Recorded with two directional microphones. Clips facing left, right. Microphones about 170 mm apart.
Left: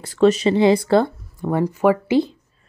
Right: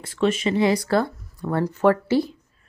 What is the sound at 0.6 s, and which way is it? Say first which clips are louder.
Speech: left 3 dB; 25° left (ahead or behind).